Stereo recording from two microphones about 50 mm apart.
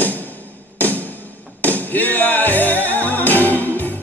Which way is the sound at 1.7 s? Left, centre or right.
Left.